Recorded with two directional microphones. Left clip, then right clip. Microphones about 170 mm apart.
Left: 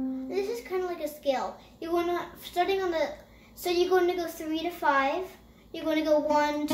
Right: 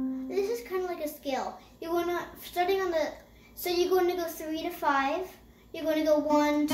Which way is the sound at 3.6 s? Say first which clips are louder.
Left 2 dB; 20° left (ahead or behind).